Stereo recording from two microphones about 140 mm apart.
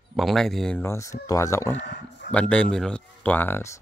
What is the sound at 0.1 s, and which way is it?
Speech, centre (ahead or behind).